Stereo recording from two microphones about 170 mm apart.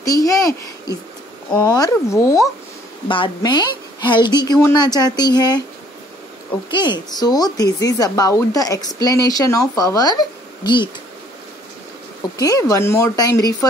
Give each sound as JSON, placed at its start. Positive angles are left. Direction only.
{"t": 0.0, "sound": "speech", "side_deg": 20}
{"t": 6.7, "sound": "speech", "side_deg": 25}
{"t": 12.4, "sound": "speech", "side_deg": 20}